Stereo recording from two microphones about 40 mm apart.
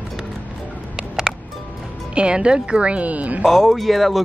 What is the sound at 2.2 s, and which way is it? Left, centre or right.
A woman's voice, right.